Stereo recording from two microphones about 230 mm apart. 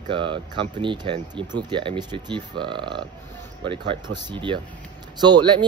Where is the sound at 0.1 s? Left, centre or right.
Right.